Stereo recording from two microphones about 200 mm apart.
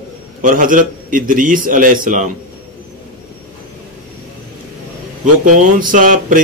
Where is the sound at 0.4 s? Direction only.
40° right (ahead or behind).